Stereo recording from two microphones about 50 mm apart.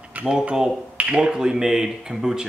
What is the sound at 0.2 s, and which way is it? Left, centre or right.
Cash register, right.